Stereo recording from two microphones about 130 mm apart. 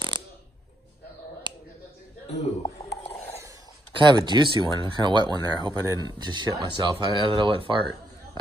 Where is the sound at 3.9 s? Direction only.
35° right (ahead or behind).